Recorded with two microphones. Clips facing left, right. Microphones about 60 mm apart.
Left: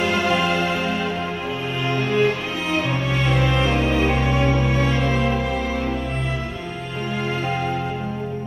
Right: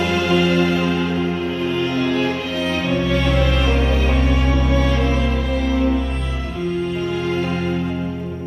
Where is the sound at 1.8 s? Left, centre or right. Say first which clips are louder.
Left 1 dB; left.